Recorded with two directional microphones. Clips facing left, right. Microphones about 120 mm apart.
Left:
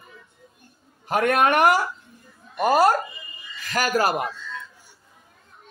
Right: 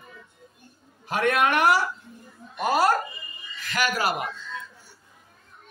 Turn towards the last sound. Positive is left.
turn(degrees=45)  # may be behind; listen again after turning